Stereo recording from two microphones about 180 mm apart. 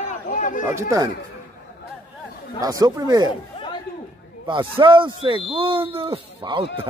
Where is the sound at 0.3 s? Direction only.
45° left (ahead or behind).